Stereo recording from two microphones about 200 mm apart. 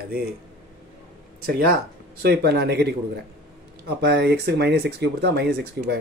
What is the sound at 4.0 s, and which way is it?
Speech, 55° right (ahead or behind).